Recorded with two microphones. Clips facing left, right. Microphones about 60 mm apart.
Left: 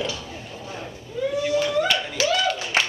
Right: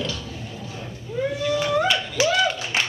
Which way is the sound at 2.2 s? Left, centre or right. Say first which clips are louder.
Right 2 dB; centre.